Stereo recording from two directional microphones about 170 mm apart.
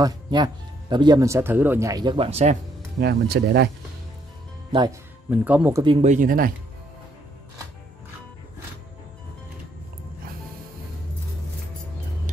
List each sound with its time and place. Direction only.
0.0 s speech: 25° right (ahead or behind)
3.0 s speech: 70° right (ahead or behind)
5.3 s speech: 10° right (ahead or behind)
5.8 s speech: 30° right (ahead or behind)
6.0 s speech: 50° right (ahead or behind)